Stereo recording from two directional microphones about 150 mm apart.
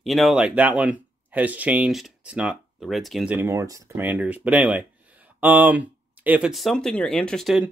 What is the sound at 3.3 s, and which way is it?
Speech, 15° right (ahead or behind).